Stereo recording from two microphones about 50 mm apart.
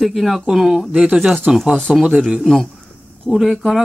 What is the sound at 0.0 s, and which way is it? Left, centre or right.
A man's voice, centre.